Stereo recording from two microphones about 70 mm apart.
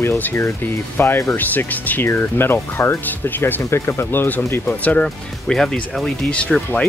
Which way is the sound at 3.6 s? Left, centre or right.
Left.